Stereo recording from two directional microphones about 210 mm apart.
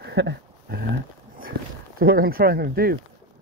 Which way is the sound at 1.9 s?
45° right (ahead or behind).